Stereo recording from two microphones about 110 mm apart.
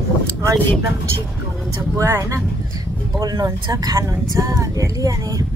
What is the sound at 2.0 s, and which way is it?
Speech, 30° right (ahead or behind).